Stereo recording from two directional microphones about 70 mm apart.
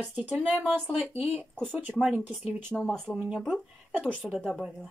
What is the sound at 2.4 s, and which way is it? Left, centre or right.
Speech, right.